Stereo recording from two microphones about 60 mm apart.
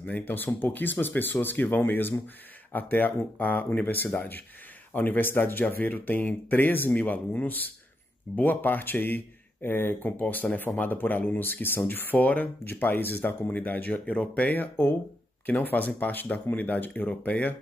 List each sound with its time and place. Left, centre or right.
0.0 s speech: left